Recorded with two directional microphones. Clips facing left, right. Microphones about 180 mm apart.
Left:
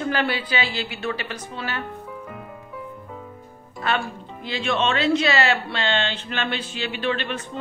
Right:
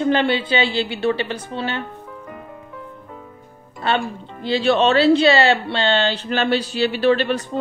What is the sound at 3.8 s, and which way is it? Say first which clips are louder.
Speech: right 4 dB; 30° right (ahead or behind).